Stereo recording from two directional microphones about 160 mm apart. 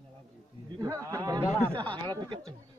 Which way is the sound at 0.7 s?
25° right (ahead or behind).